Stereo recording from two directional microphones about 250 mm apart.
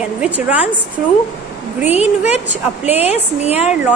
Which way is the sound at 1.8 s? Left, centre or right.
Left.